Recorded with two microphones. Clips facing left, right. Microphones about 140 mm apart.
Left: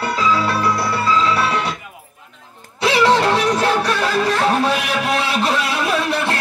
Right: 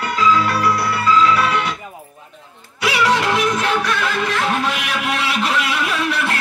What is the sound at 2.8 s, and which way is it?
Music, 30° left (ahead or behind).